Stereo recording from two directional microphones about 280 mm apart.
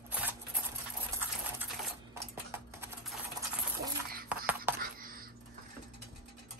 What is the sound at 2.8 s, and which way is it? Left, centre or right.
Typing, centre.